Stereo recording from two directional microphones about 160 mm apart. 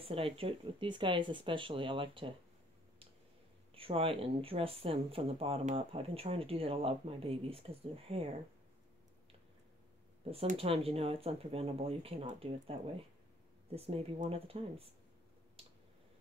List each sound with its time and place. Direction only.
0.0 s speech: 35° right (ahead or behind)
3.7 s speech: 35° right (ahead or behind)
10.3 s speech: 35° right (ahead or behind)
13.7 s speech: 40° right (ahead or behind)